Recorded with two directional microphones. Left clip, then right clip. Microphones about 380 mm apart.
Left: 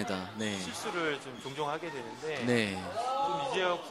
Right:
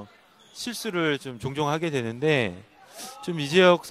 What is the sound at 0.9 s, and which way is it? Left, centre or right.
Speech, right.